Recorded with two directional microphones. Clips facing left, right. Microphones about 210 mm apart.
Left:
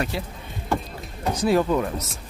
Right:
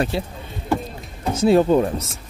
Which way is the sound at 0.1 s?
25° right (ahead or behind).